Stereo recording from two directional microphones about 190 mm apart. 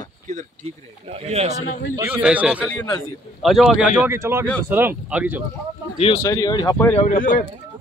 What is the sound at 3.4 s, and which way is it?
Speech, centre (ahead or behind).